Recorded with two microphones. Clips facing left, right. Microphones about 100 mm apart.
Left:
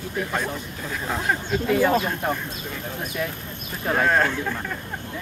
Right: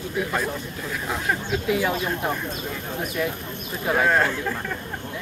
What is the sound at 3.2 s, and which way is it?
Speech, 5° left (ahead or behind).